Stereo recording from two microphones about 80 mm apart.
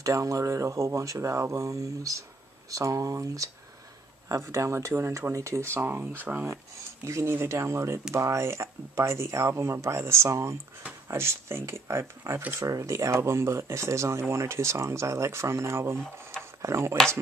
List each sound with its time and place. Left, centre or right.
0.0 s speech: right